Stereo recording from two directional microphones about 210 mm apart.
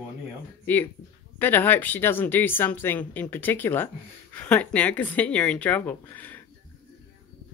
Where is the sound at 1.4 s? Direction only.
10° left (ahead or behind).